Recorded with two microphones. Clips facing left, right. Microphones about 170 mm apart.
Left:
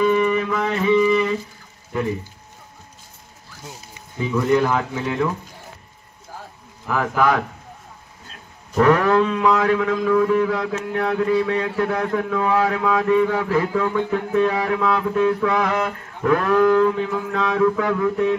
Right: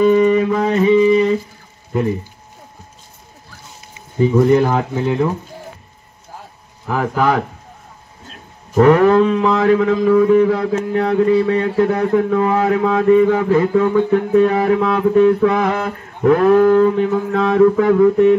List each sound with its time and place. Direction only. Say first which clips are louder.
0.0 s music: right 6 dB; 40° right (ahead or behind)
4.2 s music: right 6 dB; 40° right (ahead or behind)
6.9 s music: right 2 dB; 30° right (ahead or behind)
8.7 s music: right 5 dB; 35° right (ahead or behind)
10.7 s mantra: right 7 dB; 45° right (ahead or behind)
11.1 s music: right 5 dB; 35° right (ahead or behind)
13.1 s music: right 8 dB; 45° right (ahead or behind)